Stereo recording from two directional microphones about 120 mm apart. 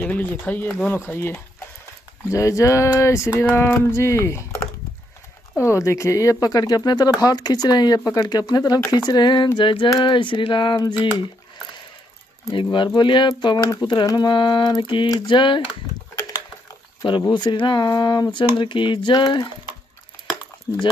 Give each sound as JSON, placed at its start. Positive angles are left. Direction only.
{"t": 0.0, "sound": "speech", "side_deg": 15}
{"t": 5.6, "sound": "speech", "side_deg": 25}
{"t": 12.7, "sound": "speech", "side_deg": 40}
{"t": 17.3, "sound": "speech", "side_deg": 40}